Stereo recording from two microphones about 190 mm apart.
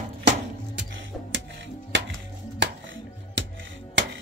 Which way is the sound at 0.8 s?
75° right (ahead or behind).